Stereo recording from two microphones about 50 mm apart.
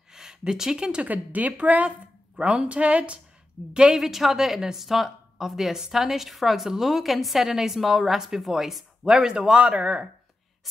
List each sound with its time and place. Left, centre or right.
0.1 s speech: centre
1.0 s a woman's voice: right